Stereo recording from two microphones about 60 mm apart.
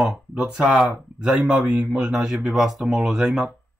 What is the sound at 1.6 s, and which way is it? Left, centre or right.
Speech, right.